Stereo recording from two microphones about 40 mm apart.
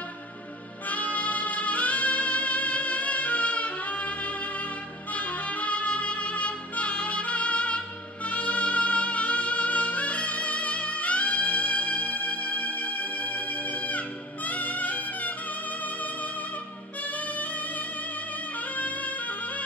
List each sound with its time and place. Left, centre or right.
0.8 s music: left
5.1 s music: left